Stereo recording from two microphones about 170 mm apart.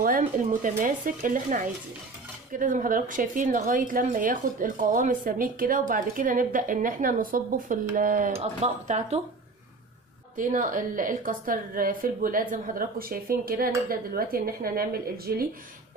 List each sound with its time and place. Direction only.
0.2 s a woman's voice: 45° right (ahead or behind)
8.4 s speech: 40° right (ahead or behind)
10.3 s a woman's voice: 50° right (ahead or behind)